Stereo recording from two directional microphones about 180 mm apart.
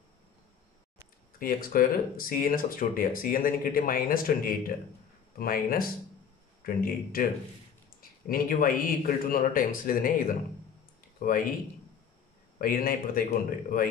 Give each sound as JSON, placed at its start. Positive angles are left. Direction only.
{"t": 1.4, "sound": "speech", "side_deg": 50}
{"t": 12.5, "sound": "speech", "side_deg": 55}